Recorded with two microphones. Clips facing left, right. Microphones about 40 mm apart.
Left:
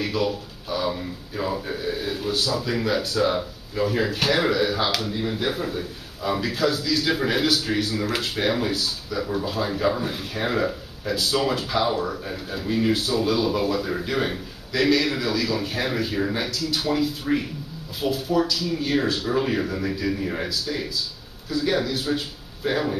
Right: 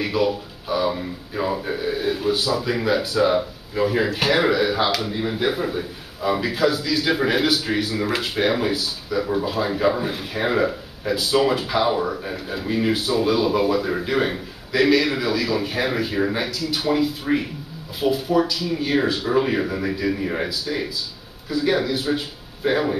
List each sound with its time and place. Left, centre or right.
0.0 s speech: centre